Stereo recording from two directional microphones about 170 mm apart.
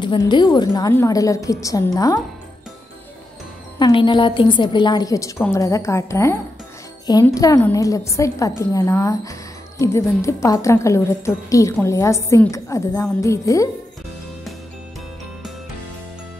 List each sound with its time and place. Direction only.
0.0 s a woman's voice: 25° left (ahead or behind)
3.8 s a woman's voice: 30° left (ahead or behind)